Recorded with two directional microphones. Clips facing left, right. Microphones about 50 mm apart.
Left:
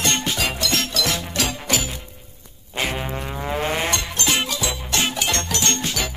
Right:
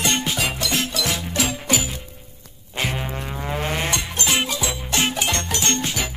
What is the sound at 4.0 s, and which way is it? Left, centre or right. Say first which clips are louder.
Music: even; centre.